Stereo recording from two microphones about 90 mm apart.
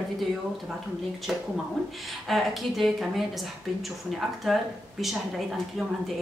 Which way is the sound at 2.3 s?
Centre (ahead or behind).